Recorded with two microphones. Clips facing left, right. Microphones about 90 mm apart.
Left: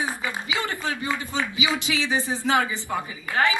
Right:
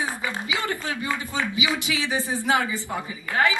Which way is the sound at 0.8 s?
25° left (ahead or behind).